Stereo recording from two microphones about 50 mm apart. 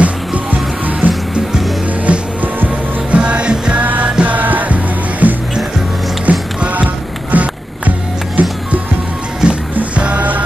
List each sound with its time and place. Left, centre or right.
0.0 s music: right
3.8 s music: right
9.4 s music: centre